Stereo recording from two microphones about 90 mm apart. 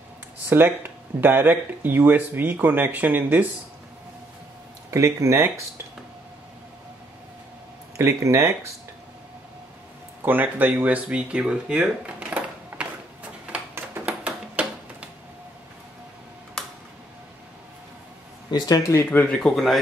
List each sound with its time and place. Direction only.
0.5 s speech: 20° right (ahead or behind)
4.9 s speech: 35° right (ahead or behind)
8.0 s speech: 30° right (ahead or behind)
10.2 s a sound: 20° right (ahead or behind)
18.8 s speech: 35° left (ahead or behind)
19.0 s speech: 20° left (ahead or behind)
19.3 s speech: 5° left (ahead or behind)